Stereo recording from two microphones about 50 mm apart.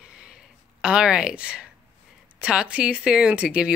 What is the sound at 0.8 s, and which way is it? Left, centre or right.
Speech, centre.